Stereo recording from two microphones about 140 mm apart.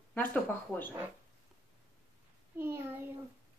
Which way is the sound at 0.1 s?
15° left (ahead or behind).